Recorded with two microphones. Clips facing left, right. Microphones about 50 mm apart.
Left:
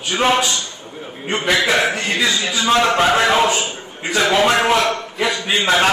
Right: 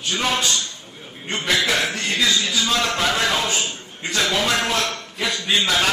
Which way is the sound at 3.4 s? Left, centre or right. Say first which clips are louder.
Left 6 dB; centre.